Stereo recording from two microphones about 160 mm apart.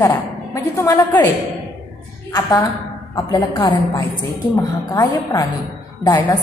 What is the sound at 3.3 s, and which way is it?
A woman's voice, 25° left (ahead or behind).